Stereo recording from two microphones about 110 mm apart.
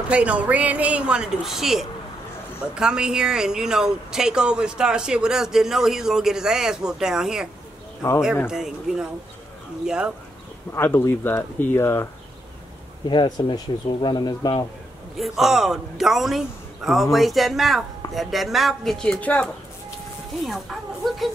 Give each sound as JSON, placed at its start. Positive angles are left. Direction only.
{"t": 0.1, "sound": "a woman's voice", "side_deg": -10}
{"t": 8.5, "sound": "a woman's voice", "side_deg": -5}
{"t": 10.7, "sound": "speech", "side_deg": 20}
{"t": 13.1, "sound": "speech", "side_deg": 45}
{"t": 15.1, "sound": "speech", "side_deg": 0}
{"t": 20.4, "sound": "speech", "side_deg": 0}